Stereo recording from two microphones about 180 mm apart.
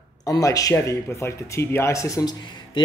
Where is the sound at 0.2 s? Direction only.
20° left (ahead or behind).